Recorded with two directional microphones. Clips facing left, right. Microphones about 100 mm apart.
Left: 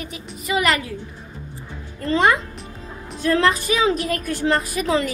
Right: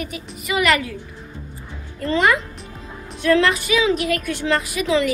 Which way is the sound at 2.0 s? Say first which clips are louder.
Even; 30° left (ahead or behind).